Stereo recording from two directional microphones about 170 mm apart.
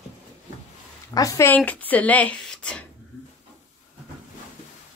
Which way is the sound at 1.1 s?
20° left (ahead or behind).